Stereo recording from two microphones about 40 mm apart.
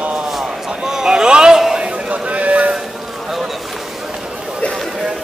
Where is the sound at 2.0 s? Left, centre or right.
Right.